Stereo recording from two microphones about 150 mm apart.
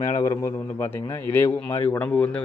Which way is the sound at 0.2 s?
20° left (ahead or behind).